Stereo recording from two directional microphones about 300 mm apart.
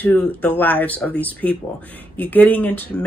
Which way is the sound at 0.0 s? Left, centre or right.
Centre.